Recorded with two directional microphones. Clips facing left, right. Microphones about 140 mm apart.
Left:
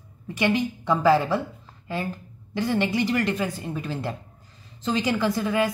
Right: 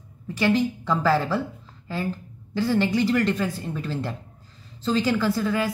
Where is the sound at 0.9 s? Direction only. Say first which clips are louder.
Left 5 dB; 15° left (ahead or behind).